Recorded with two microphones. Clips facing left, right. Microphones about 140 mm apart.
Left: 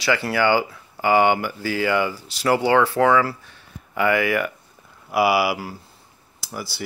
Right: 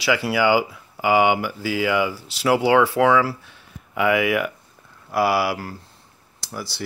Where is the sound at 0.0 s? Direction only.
5° right (ahead or behind).